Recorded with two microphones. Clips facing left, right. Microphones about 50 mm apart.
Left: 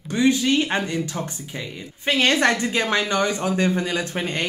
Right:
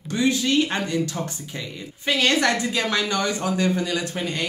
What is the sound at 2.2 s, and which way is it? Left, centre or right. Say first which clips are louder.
Speech: left 2 dB; left.